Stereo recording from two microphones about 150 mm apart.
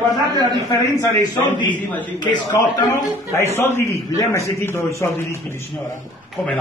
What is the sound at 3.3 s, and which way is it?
A man's voice, 15° left (ahead or behind).